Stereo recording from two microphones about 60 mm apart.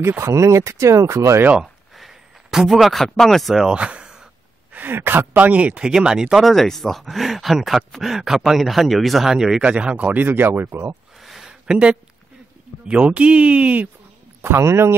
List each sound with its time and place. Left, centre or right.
0.0 s speech: right
2.0 s a man's voice: centre
3.7 s a sound: centre
4.7 s speech: right; by 6.4 s centre
6.4 s speech: centre; by 11.0 s right
11.1 s a sound: centre
11.4 s a sound: centre
12.8 s speech: centre
14.4 s a man's voice: right